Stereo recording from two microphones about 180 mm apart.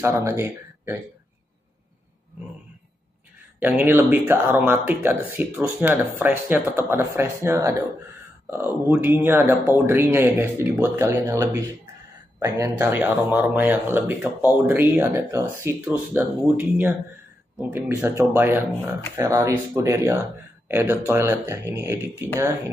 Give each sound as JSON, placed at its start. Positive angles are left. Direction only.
{"t": 0.0, "sound": "speech", "side_deg": -15}
{"t": 3.5, "sound": "speech", "side_deg": -10}